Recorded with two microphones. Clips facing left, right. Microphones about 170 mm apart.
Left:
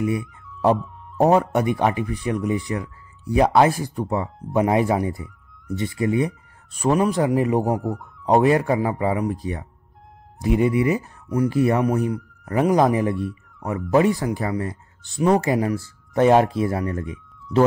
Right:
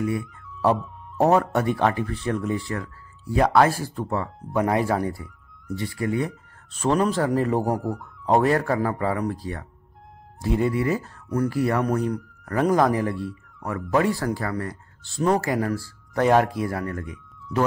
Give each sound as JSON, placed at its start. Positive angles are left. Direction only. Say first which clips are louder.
{"t": 0.0, "sound": "speech", "louder": "left 2 dB", "side_deg": 20}
{"t": 7.8, "sound": "speech", "louder": "left 2 dB", "side_deg": 0}
{"t": 8.3, "sound": "speech", "louder": "left 3 dB", "side_deg": 20}